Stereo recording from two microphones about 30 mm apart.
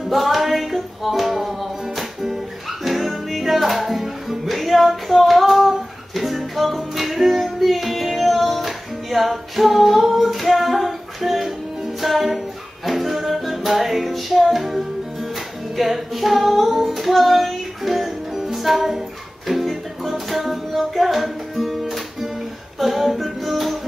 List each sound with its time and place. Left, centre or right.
0.1 s music: centre
18.8 s speech: centre
19.4 s music: centre